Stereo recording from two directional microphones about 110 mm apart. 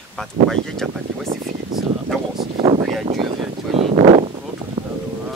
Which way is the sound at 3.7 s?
60° right (ahead or behind).